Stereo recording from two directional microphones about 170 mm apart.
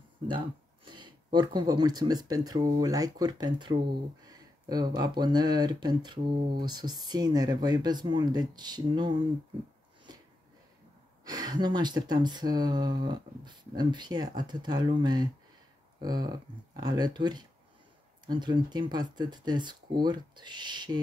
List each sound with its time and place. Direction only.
0.8 s speech: 25° right (ahead or behind)
11.2 s speech: 25° right (ahead or behind)